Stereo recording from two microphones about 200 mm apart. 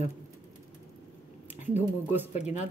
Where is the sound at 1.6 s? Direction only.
10° right (ahead or behind).